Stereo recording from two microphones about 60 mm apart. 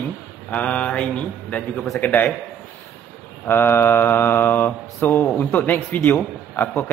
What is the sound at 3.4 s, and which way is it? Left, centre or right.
Mantra, left.